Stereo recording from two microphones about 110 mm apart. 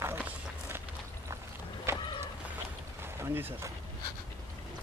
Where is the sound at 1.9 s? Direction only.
25° right (ahead or behind).